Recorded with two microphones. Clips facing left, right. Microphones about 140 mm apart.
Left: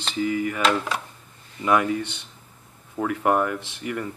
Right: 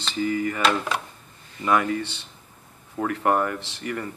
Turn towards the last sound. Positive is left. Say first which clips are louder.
# left 1 dB
turn(degrees=10)  # may be behind; listen again after turning